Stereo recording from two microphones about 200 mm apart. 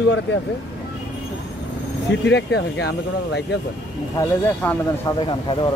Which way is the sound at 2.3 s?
55° left (ahead or behind).